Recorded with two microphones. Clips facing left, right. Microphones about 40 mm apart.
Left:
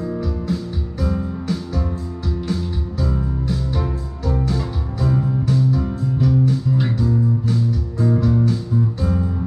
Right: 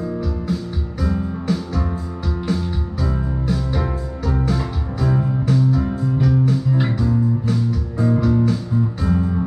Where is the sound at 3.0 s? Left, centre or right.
Right.